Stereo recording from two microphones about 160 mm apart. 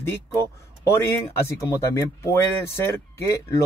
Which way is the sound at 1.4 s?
15° left (ahead or behind).